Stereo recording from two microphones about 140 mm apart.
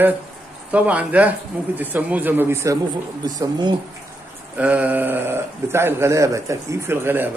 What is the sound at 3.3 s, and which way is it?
Speech, 30° right (ahead or behind).